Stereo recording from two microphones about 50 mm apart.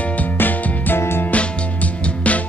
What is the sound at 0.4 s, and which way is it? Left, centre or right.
Music, left.